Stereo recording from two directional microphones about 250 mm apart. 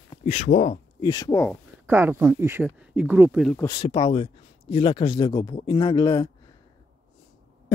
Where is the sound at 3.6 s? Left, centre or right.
Centre.